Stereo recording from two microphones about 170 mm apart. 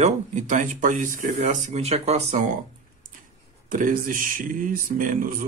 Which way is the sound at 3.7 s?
50° right (ahead or behind).